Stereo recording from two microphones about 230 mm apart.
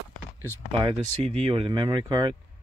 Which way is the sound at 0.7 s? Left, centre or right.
Right.